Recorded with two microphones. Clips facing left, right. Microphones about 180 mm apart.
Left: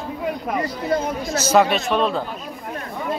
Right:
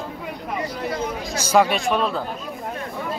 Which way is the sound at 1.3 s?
10° right (ahead or behind).